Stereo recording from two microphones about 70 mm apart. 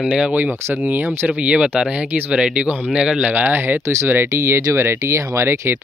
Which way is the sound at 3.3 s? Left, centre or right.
Right.